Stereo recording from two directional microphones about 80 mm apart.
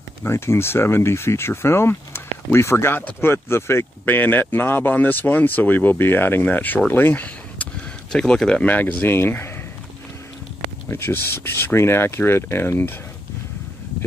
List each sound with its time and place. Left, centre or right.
0.2 s speech: left
8.1 s speech: centre
9.0 s speech: left
10.9 s speech: left